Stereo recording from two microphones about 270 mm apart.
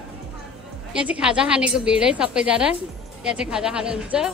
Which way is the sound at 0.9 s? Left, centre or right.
Centre.